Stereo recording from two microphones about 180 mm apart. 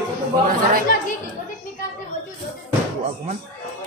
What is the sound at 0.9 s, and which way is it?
Chatter, 50° left (ahead or behind).